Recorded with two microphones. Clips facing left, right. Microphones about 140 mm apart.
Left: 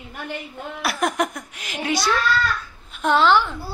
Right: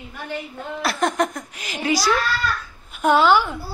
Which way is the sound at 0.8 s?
5° left (ahead or behind).